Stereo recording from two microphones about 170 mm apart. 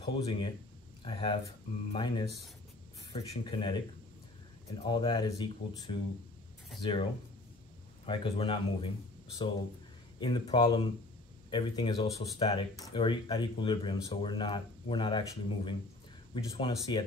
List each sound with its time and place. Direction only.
0.0 s speech: 30° left (ahead or behind)
4.8 s speech: 30° left (ahead or behind)
10.2 s speech: 25° left (ahead or behind)